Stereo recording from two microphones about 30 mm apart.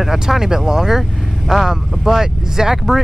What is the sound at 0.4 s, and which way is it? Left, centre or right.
Speech, right.